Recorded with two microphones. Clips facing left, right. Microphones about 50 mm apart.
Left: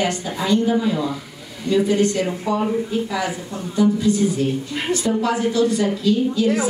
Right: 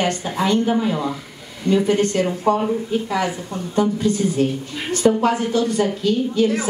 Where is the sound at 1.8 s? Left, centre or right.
Right.